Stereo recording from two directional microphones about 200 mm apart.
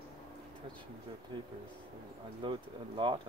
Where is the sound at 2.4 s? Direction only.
25° right (ahead or behind).